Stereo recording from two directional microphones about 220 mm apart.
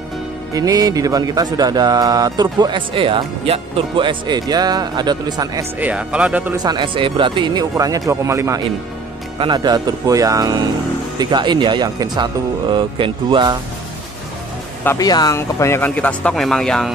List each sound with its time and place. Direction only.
0.6 s speech: 15° right (ahead or behind)
6.5 s speech: 20° right (ahead or behind)
14.8 s speech: 15° left (ahead or behind)